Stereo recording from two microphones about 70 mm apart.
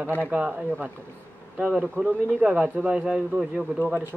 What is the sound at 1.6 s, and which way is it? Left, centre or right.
Speech, right.